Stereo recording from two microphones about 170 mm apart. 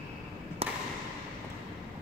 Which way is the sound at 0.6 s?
35° right (ahead or behind).